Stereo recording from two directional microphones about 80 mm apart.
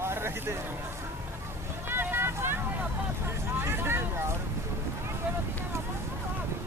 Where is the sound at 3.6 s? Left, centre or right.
Right.